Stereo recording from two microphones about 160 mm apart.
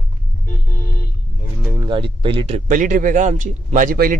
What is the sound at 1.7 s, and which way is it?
Speech, 25° right (ahead or behind).